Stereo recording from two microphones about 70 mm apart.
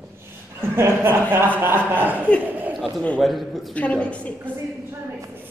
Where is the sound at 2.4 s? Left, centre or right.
Right.